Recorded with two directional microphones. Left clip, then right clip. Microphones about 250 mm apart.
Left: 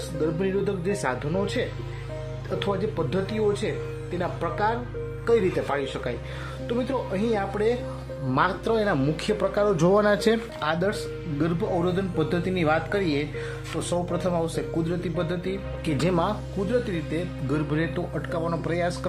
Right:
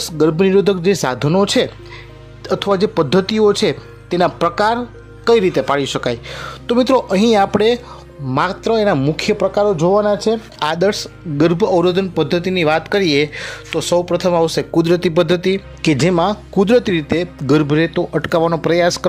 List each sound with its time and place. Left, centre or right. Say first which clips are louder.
0.2 s speech: right 13 dB; right
8.3 s speech: right 7 dB; right
9.7 s speech: right 7 dB; centre
10.6 s speech: right 10 dB; right